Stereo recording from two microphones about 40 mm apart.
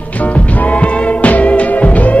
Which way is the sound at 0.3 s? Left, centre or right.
Left.